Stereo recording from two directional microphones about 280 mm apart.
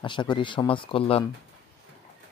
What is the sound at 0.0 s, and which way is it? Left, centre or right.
Speech, centre.